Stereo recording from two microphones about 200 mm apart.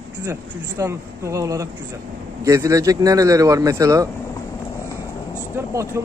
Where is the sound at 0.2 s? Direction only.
15° right (ahead or behind).